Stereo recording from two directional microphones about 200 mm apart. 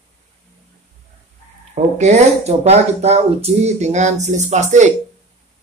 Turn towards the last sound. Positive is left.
turn(degrees=-35)  # may be behind; listen again after turning